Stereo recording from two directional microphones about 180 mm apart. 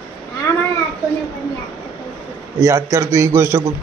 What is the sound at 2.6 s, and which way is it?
A man's voice, 15° right (ahead or behind).